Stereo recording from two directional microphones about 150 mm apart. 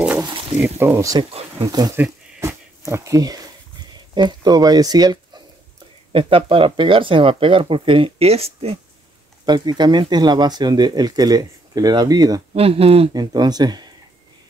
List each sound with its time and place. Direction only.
0.2 s a sound: 35° right (ahead or behind)
0.7 s speech: 15° right (ahead or behind)
2.0 s a sound: 20° right (ahead or behind)
4.1 s speech: 30° right (ahead or behind)
9.5 s speech: 30° right (ahead or behind)
12.5 s speech: 40° right (ahead or behind)
13.1 s speech: 25° right (ahead or behind)